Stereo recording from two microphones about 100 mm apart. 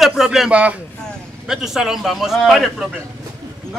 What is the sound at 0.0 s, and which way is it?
A man's voice, 5° right (ahead or behind).